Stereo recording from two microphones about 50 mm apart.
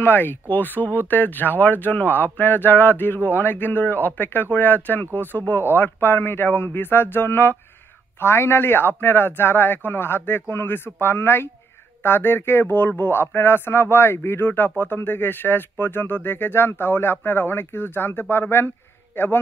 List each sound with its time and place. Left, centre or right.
0.0 s speech: left
14.4 s speech: left